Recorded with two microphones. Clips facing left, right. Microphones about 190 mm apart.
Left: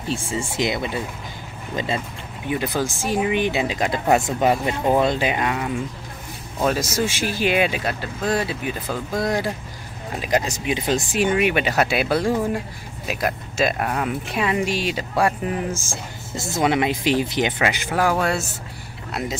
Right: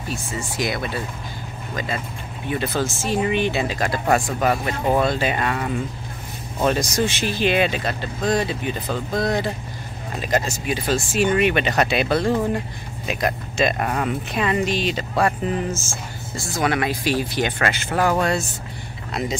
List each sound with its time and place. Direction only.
0.1 s speech: 30° left (ahead or behind)
2.4 s speech: 15° left (ahead or behind)
17.8 s speech: 5° left (ahead or behind)